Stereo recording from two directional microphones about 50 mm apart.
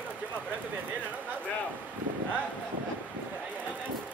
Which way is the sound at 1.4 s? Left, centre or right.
Left.